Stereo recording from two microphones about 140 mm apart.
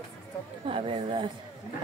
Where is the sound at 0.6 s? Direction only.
40° right (ahead or behind).